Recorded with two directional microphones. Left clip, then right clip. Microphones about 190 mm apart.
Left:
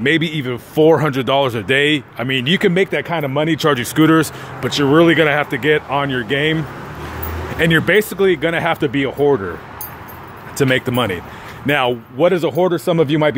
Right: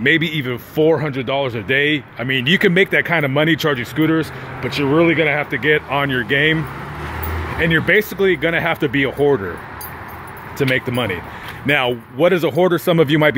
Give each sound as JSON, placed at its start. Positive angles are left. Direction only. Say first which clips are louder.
{"t": 0.0, "sound": "speech", "louder": "right 1 dB", "side_deg": 10}
{"t": 0.8, "sound": "speech", "louder": "left 4 dB", "side_deg": 25}
{"t": 3.7, "sound": "speech", "louder": "left 4 dB", "side_deg": 25}
{"t": 10.6, "sound": "speech", "louder": "left 2 dB", "side_deg": 15}